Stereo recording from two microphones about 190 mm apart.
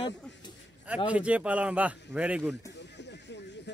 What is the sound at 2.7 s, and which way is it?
Horse, 65° left (ahead or behind).